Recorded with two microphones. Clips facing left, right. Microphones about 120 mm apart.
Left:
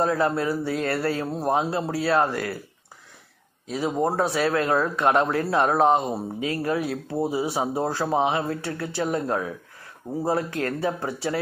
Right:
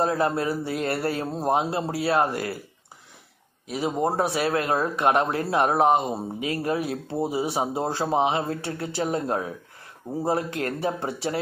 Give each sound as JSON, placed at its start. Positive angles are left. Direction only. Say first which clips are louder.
{"t": 0.0, "sound": "speech", "louder": "left 1 dB", "side_deg": -25}
{"t": 3.6, "sound": "speech", "louder": "left 1 dB", "side_deg": -20}